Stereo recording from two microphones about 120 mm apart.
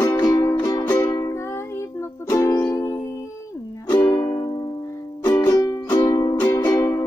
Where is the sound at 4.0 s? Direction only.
20° left (ahead or behind).